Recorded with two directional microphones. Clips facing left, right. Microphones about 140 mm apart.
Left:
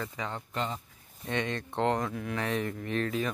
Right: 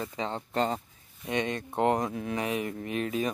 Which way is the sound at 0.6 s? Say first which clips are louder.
Right 6 dB; 40° right (ahead or behind).